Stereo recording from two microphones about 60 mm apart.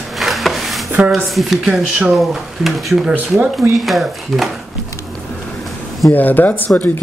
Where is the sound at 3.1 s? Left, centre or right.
Right.